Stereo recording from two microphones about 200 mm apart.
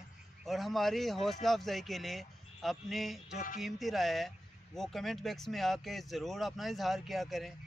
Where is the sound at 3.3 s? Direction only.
40° left (ahead or behind).